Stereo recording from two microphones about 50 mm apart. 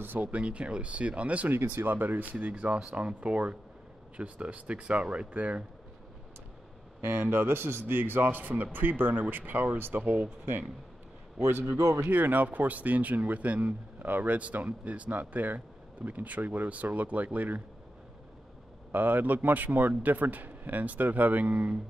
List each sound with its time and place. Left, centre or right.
0.2 s speech: right
1.6 s a man's voice: right
1.9 s speech: right
2.9 s speech: right
7.0 s a man's voice: right
11.4 s a man's voice: right
12.1 s speech: right
18.9 s speech: right